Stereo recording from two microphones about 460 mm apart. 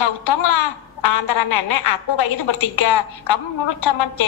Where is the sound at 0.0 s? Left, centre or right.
Left.